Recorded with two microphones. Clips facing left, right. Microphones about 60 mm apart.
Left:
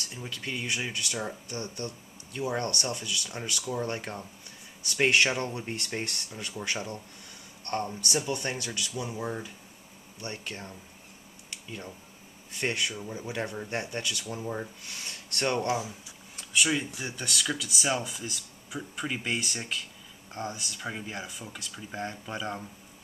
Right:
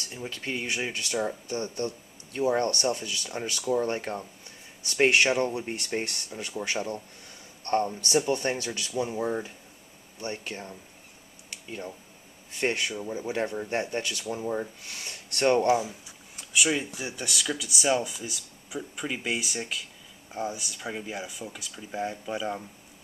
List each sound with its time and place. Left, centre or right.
0.3 s speech: right
10.2 s speech: right
12.5 s speech: right
12.9 s speech: centre
13.3 s speech: right
14.4 s speech: centre
14.9 s speech: right
16.3 s speech: centre